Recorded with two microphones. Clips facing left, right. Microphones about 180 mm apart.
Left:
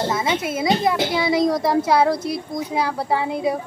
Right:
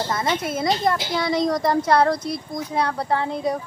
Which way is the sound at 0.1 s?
5° left (ahead or behind).